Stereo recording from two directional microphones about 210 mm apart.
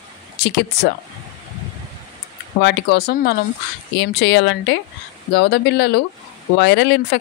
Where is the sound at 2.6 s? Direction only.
55° left (ahead or behind).